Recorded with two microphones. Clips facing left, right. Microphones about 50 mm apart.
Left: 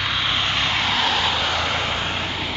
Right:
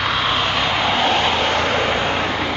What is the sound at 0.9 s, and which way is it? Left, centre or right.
Vehicle, right.